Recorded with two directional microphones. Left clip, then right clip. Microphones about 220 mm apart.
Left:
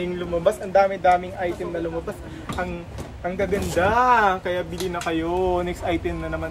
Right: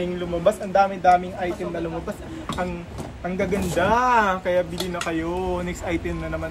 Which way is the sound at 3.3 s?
Centre (ahead or behind).